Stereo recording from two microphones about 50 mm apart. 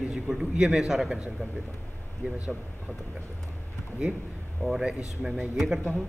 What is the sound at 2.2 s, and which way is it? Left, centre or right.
Speech, right.